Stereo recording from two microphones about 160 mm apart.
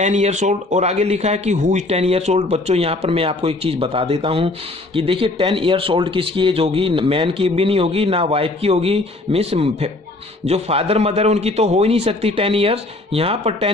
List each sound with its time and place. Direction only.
0.0 s speech: 45° right (ahead or behind)